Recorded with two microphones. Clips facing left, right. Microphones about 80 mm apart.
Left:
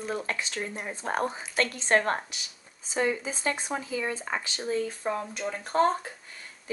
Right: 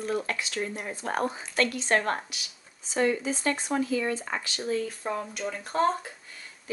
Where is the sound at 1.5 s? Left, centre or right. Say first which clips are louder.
Left 1 dB; left.